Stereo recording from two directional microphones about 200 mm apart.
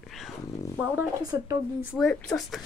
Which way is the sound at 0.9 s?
15° right (ahead or behind).